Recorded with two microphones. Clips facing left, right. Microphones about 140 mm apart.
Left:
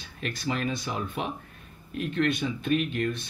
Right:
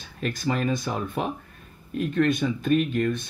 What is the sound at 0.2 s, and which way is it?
Speech, 40° right (ahead or behind).